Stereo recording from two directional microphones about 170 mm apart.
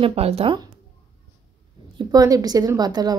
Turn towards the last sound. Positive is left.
turn(degrees=-25)  # may be behind; listen again after turning